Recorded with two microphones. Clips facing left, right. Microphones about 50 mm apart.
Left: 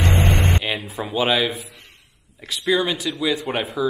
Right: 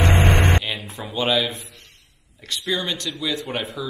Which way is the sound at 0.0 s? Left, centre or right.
Right.